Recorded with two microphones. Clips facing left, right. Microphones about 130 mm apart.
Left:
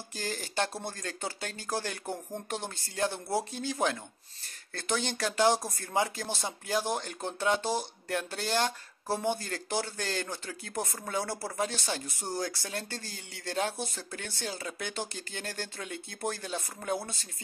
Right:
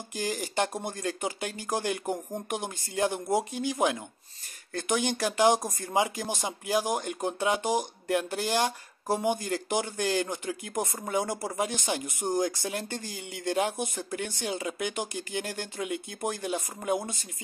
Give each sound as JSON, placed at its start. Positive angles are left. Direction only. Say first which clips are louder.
{"t": 0.1, "sound": "speech", "louder": "right 5 dB", "side_deg": -15}